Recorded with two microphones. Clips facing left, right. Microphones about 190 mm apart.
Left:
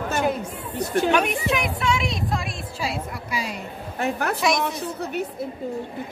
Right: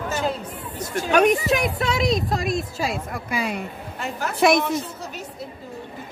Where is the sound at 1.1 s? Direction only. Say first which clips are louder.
Right 4 dB; 40° right (ahead or behind).